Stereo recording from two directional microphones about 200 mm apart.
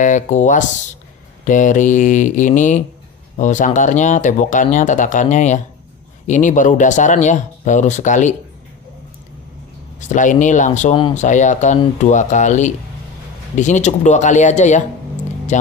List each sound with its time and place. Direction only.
0.0 s speech: 40° left (ahead or behind)
9.9 s speech: 40° left (ahead or behind)